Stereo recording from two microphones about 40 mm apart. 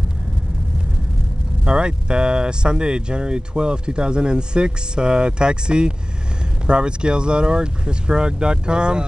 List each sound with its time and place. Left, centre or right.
1.6 s speech: right